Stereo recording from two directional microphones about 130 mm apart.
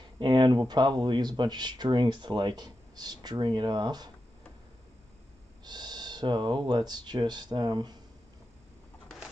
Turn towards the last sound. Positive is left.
turn(degrees=-35)  # may be behind; listen again after turning